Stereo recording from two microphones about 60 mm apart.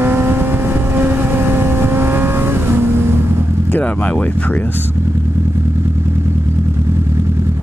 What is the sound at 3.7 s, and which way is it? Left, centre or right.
Speech, left.